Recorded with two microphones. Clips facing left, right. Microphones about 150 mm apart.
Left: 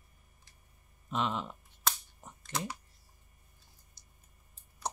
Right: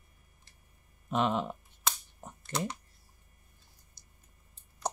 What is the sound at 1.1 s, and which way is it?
Speech, 50° right (ahead or behind).